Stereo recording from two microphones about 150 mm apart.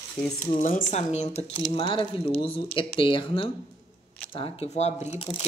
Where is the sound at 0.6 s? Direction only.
55° left (ahead or behind).